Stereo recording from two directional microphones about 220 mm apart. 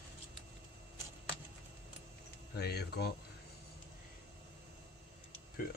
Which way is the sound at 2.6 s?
45° left (ahead or behind).